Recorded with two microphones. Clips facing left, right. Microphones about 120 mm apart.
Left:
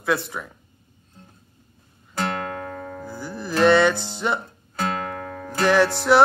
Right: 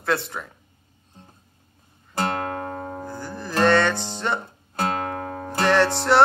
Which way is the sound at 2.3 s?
30° right (ahead or behind).